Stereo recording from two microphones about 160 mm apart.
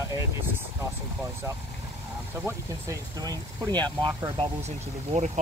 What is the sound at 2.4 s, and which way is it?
Speech, 20° right (ahead or behind).